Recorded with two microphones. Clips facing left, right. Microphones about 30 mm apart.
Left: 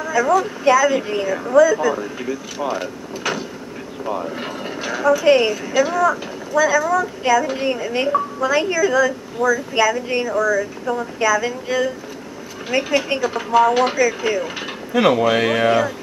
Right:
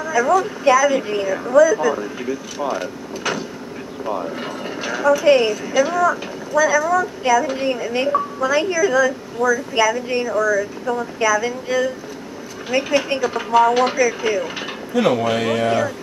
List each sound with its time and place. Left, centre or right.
0.0 s speech: centre
15.0 s speech: centre